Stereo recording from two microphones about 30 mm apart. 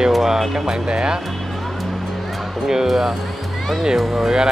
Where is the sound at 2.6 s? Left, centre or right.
Centre.